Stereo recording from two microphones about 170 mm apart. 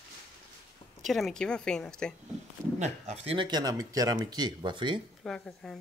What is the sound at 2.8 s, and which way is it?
Speech, 40° right (ahead or behind).